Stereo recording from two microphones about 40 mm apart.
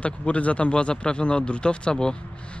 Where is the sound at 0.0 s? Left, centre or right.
Left.